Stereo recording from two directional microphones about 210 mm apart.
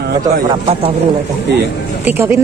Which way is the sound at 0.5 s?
25° right (ahead or behind).